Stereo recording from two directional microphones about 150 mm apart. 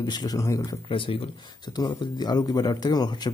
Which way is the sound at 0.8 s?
35° left (ahead or behind).